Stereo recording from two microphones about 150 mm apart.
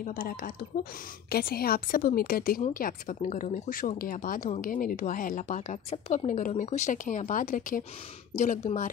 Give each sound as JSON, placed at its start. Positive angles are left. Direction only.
{"t": 0.0, "sound": "a woman's voice", "side_deg": 70}
{"t": 2.7, "sound": "a woman's voice", "side_deg": 70}